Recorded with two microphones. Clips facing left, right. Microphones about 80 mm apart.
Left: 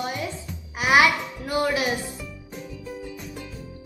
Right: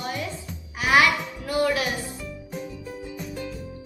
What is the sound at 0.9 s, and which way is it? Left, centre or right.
Music, left.